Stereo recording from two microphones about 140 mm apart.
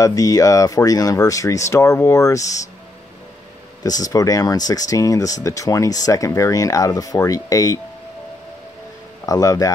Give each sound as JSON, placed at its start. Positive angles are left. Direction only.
{"t": 0.0, "sound": "speech", "side_deg": 25}
{"t": 3.8, "sound": "speech", "side_deg": 25}
{"t": 9.2, "sound": "speech", "side_deg": 25}